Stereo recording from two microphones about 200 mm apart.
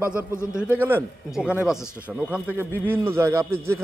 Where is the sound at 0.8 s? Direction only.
5° right (ahead or behind).